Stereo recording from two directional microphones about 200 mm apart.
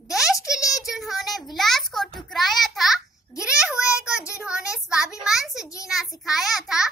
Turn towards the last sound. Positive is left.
turn(degrees=0)  # may be behind; listen again after turning